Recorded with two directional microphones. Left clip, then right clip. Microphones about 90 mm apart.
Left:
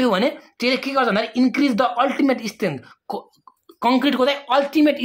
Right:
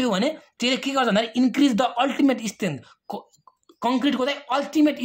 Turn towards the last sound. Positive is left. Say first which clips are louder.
# left 4 dB
turn(degrees=-25)  # may be behind; listen again after turning